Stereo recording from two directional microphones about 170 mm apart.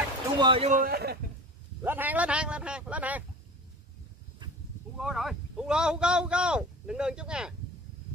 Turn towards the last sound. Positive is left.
turn(degrees=-5)  # may be behind; listen again after turning